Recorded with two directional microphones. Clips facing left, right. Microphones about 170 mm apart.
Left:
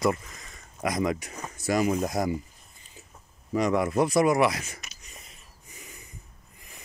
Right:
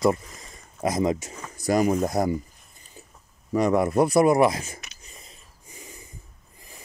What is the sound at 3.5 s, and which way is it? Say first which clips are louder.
Speech: right 3 dB; 35° right (ahead or behind).